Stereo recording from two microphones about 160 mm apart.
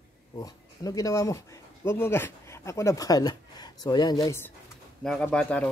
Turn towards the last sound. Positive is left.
turn(degrees=5)  # may be behind; listen again after turning